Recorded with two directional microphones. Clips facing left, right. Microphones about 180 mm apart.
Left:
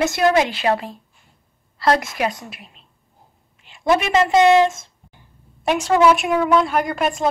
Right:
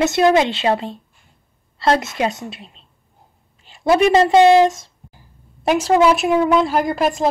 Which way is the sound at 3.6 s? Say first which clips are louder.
Right 4 dB; 35° right (ahead or behind).